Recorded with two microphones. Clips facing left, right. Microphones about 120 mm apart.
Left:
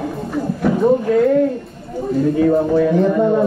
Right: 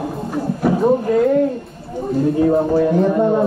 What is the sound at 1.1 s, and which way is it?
Speech, 5° right (ahead or behind).